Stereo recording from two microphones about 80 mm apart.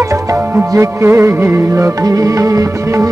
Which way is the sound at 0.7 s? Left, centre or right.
Right.